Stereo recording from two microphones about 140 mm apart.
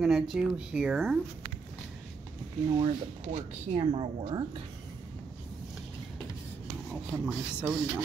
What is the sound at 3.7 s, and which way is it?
Speech, 35° right (ahead or behind).